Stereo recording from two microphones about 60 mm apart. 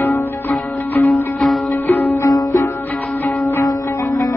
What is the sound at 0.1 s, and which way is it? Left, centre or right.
Music, left.